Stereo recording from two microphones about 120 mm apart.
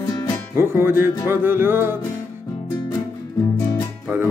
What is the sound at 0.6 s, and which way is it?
Music, 20° right (ahead or behind).